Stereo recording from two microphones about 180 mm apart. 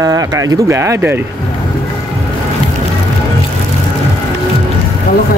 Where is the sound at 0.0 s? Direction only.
20° right (ahead or behind).